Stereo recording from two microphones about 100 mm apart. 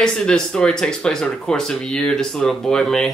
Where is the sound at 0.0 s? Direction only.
10° left (ahead or behind).